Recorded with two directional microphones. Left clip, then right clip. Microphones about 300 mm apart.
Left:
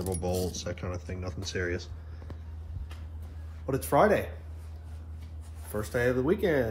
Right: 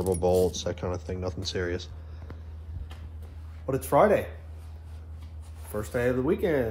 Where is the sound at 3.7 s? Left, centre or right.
Centre.